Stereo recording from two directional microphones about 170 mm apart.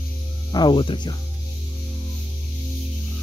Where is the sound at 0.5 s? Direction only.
30° left (ahead or behind).